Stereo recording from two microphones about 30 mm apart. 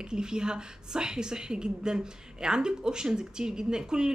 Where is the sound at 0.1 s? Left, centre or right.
Right.